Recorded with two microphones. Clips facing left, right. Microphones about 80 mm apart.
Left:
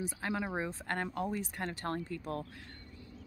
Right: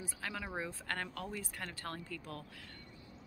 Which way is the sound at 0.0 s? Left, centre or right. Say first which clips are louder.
Left 7 dB; left.